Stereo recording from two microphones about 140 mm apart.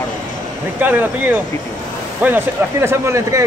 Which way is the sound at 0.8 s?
10° right (ahead or behind).